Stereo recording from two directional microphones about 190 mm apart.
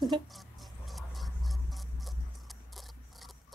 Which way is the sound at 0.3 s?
Centre (ahead or behind).